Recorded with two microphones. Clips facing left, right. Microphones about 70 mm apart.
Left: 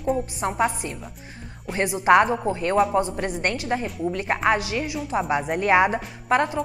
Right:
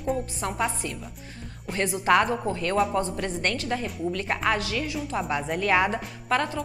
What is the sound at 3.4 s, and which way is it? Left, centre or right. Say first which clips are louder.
A woman's voice: left 3 dB; left.